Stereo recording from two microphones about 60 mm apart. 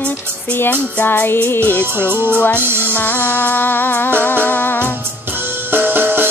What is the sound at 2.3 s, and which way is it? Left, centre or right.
Music, left.